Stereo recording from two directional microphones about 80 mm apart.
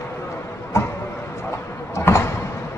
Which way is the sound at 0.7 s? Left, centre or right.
Left.